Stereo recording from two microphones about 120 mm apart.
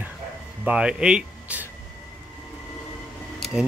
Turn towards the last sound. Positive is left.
turn(degrees=0)  # may be behind; listen again after turning